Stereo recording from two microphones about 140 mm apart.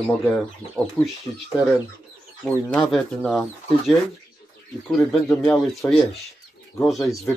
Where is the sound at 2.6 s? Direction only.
5° left (ahead or behind).